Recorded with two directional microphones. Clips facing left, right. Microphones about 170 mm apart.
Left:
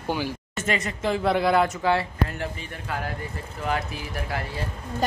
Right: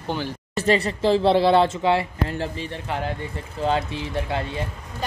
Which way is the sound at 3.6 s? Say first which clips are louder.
Right 5 dB; 25° right (ahead or behind).